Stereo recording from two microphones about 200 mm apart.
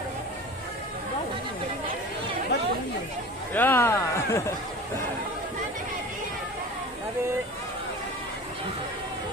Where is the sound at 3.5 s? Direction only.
10° left (ahead or behind).